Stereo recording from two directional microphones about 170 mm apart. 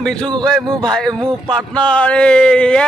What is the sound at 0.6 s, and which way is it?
Speech, 20° right (ahead or behind).